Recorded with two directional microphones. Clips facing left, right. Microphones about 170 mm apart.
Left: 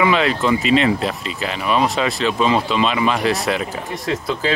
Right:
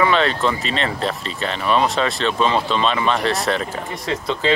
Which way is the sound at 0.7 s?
35° right (ahead or behind).